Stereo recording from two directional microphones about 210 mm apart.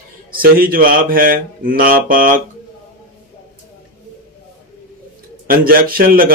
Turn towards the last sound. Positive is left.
turn(degrees=-45)  # may be behind; listen again after turning